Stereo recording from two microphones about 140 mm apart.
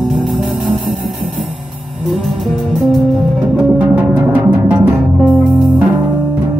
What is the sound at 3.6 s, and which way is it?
Music, 10° right (ahead or behind).